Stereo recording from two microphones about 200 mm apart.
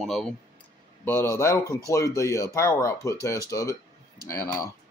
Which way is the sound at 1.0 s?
10° left (ahead or behind).